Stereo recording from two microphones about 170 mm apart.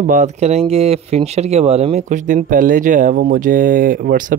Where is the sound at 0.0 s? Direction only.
50° right (ahead or behind).